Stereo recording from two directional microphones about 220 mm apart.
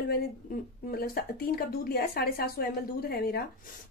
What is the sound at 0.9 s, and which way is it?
A woman's voice, 45° left (ahead or behind).